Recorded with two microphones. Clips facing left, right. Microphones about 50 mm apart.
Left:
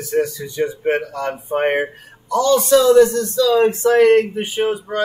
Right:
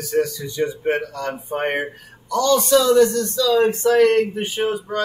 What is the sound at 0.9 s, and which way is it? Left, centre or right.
Speech, centre.